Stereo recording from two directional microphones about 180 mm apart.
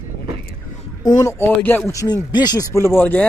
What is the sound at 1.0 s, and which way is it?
A man's voice, 20° left (ahead or behind).